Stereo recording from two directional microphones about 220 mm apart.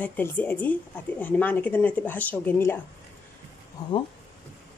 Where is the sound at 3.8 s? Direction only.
15° left (ahead or behind).